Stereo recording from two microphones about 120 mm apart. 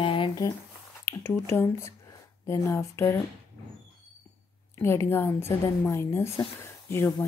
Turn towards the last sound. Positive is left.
turn(degrees=20)  # may be behind; listen again after turning